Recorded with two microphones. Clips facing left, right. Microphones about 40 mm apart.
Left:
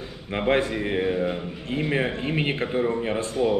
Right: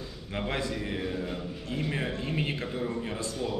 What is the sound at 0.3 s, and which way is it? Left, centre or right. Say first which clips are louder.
A man's voice: left 9 dB; left.